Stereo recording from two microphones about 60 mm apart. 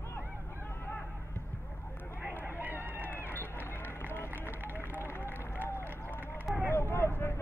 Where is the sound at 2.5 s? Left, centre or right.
Right.